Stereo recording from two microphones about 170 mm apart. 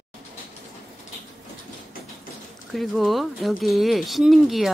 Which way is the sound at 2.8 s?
Centre (ahead or behind).